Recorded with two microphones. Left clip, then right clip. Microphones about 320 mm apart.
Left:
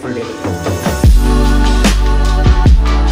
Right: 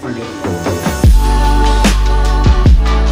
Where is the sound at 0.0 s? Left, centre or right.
Centre.